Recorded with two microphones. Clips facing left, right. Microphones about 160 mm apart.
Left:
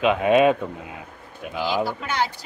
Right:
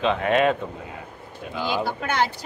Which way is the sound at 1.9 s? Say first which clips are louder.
Right 2 dB; 55° right (ahead or behind).